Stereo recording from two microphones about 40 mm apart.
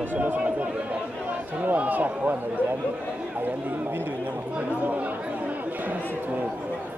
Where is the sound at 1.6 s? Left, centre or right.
Right.